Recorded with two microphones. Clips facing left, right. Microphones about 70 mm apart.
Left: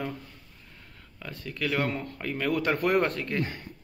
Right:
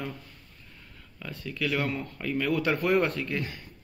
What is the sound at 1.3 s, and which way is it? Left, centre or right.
A man's voice, left.